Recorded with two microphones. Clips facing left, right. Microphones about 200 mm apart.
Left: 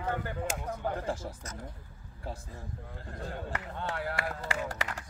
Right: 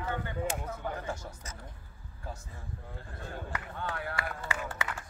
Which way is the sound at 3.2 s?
30° left (ahead or behind).